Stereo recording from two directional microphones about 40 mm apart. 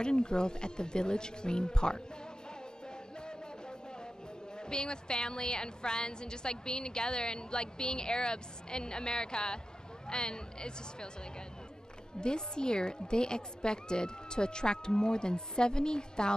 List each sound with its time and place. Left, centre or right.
0.0 s a woman's voice: left
4.6 s a woman's voice: left
12.2 s a woman's voice: left